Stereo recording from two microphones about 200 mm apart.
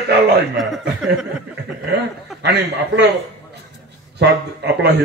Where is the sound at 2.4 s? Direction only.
55° right (ahead or behind).